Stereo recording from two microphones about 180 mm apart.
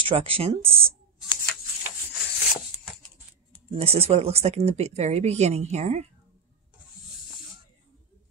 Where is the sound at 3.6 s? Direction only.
35° right (ahead or behind).